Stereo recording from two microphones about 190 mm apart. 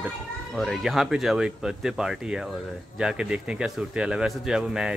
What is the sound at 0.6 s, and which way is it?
A man's voice, centre (ahead or behind).